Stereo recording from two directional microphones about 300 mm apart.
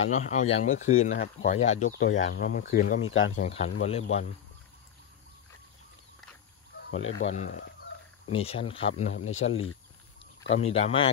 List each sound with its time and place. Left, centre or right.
0.1 s speech: left
1.9 s speech: left
3.4 s speech: left
7.0 s speech: left
7.3 s speech: left
9.5 s speech: left
10.7 s speech: centre